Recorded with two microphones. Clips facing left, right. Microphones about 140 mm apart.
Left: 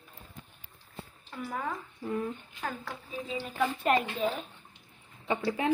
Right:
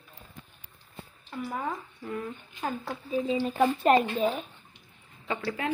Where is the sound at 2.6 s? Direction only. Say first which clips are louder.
Right 5 dB; 25° right (ahead or behind).